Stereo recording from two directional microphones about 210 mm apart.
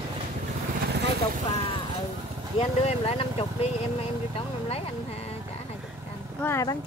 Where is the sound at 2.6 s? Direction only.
30° left (ahead or behind).